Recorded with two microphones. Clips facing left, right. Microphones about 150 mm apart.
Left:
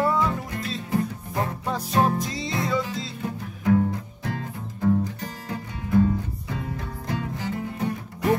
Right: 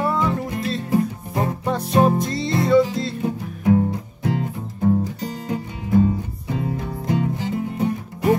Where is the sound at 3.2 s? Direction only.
25° right (ahead or behind).